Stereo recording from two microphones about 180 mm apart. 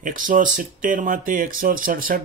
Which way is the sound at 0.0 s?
45° right (ahead or behind).